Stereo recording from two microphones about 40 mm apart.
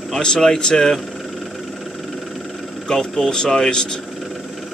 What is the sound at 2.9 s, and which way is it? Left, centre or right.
Speech, centre.